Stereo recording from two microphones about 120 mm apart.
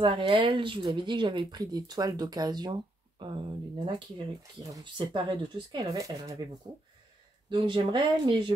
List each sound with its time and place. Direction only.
0.0 s speech: 45° right (ahead or behind)
4.4 s speech: 30° right (ahead or behind)
5.9 s speech: 30° right (ahead or behind)
7.4 s speech: 40° right (ahead or behind)